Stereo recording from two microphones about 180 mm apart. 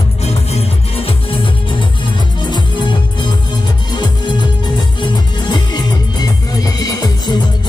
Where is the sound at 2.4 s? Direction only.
25° left (ahead or behind).